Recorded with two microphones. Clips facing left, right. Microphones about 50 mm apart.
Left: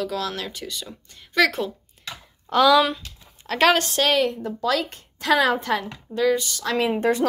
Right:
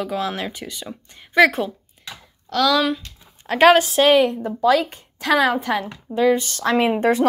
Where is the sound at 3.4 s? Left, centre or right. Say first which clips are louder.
Right 5 dB; centre.